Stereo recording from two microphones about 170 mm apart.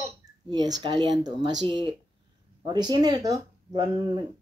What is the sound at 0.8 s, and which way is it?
Speech, 30° right (ahead or behind).